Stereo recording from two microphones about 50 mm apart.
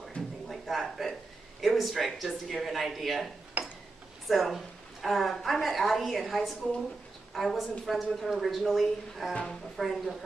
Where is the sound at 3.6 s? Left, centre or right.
Right.